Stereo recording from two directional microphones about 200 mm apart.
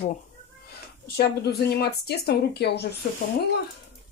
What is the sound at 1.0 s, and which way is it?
Speech, 50° left (ahead or behind).